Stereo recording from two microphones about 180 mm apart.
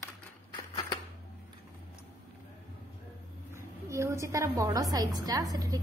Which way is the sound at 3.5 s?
15° right (ahead or behind).